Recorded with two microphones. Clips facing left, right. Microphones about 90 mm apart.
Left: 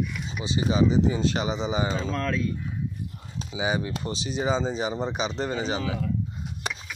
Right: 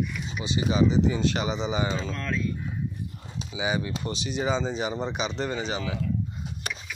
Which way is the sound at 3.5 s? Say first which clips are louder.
Left 1 dB; 30° left (ahead or behind).